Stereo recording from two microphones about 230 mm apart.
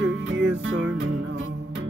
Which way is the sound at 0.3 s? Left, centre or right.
Right.